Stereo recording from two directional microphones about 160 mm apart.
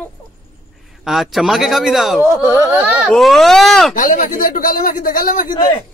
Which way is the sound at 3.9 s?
60° left (ahead or behind).